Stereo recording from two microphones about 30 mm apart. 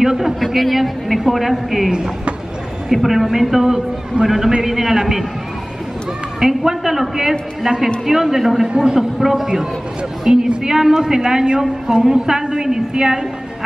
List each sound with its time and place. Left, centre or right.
0.0 s a man's voice: centre
0.6 s speech: centre
1.9 s a man's voice: right
2.9 s a man's voice: centre
6.4 s a man's voice: centre
8.7 s a man's voice: right